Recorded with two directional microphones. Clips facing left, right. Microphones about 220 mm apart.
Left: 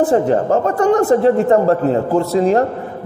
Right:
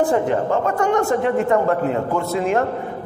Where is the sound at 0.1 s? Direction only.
35° left (ahead or behind).